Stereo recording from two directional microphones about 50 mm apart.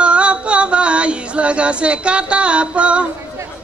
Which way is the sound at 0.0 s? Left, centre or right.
Right.